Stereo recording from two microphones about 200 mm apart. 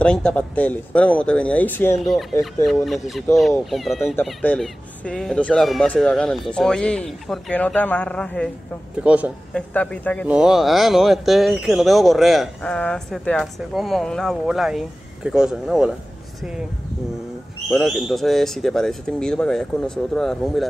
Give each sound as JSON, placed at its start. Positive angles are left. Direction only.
{"t": 0.0, "sound": "speech", "side_deg": 5}
{"t": 9.0, "sound": "speech", "side_deg": -5}
{"t": 9.5, "sound": "speech", "side_deg": 5}
{"t": 10.2, "sound": "speech", "side_deg": -5}
{"t": 17.6, "sound": "speech", "side_deg": 0}